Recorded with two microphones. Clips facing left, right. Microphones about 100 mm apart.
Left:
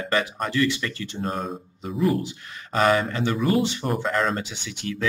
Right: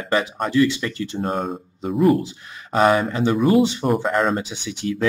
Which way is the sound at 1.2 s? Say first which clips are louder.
Right 4 dB; 45° right (ahead or behind).